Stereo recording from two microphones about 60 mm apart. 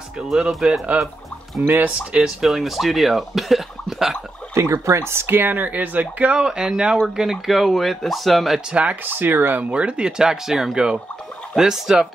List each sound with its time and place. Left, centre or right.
0.3 s speech: centre
0.9 s speech: right
2.1 s speech: centre
4.6 s speech: right
6.4 s speech: centre
8.7 s speech: right; by 12.1 s centre